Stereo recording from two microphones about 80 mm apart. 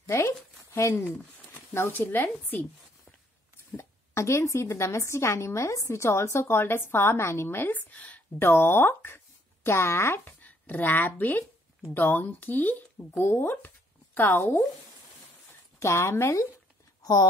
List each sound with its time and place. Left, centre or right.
0.7 s speech: left
3.7 s speech: left
7.9 s a woman's voice: centre
8.5 s speech: left
15.8 s speech: left
17.0 s speech: left